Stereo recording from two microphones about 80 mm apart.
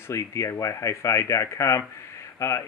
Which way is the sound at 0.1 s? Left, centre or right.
Left.